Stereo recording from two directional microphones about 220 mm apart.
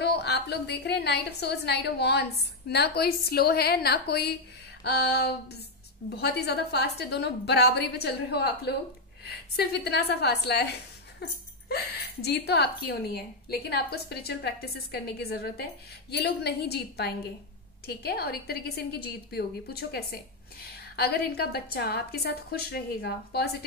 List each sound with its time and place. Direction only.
0.0 s a woman's voice: 50° left (ahead or behind)